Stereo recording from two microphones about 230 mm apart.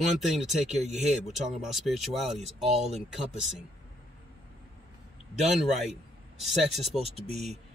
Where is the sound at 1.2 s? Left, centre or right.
Centre.